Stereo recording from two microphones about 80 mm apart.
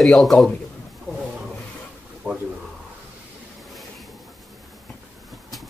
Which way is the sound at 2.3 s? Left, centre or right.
Right.